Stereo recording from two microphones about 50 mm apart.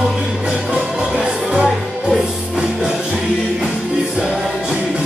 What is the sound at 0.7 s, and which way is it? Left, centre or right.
Music, centre.